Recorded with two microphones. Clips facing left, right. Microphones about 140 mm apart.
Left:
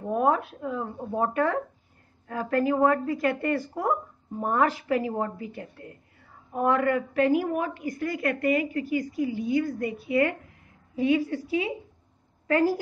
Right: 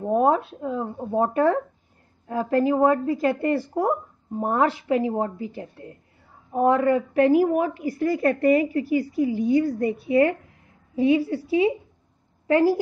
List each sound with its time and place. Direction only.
0.1 s a woman's voice: 30° right (ahead or behind)